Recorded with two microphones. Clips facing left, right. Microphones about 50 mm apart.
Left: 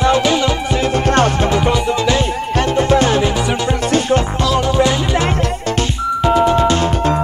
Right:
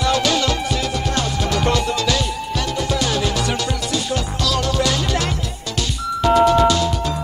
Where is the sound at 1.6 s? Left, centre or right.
Centre.